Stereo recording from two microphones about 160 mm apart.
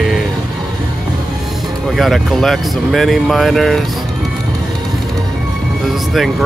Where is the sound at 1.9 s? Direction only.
Centre (ahead or behind).